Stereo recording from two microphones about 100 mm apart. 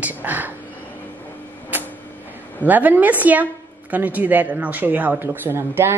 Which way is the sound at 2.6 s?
15° right (ahead or behind).